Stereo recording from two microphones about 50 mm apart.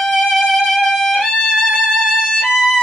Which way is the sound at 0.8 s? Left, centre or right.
Centre.